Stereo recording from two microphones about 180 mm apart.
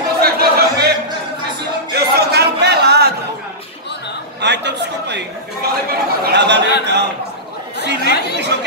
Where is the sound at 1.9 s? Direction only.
65° right (ahead or behind).